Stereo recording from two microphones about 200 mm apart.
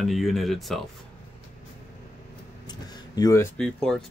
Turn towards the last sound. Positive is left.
turn(degrees=5)  # may be behind; listen again after turning